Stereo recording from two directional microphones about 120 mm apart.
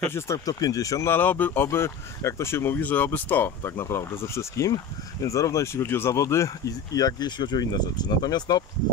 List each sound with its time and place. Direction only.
0.0 s speech: 20° left (ahead or behind)